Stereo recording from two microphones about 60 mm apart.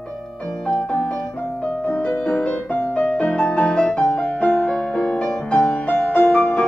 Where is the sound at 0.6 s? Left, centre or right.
Centre.